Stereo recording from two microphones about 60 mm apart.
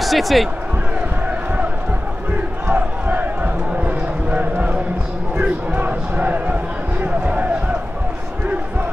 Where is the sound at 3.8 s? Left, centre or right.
Right.